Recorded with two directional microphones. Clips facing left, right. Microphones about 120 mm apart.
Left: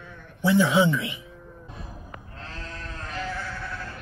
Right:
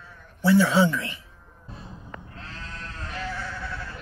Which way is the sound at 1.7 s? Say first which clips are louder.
Right 2 dB; 30° right (ahead or behind).